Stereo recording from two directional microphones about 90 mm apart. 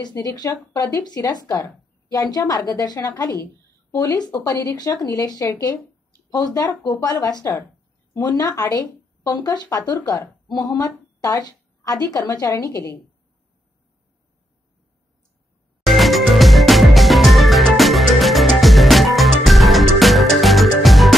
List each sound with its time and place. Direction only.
0.2 s a woman's voice: 45° left (ahead or behind)
11.1 s a sound: 45° left (ahead or behind)
12.1 s a woman's voice: 45° left (ahead or behind)
15.8 s music: centre (ahead or behind)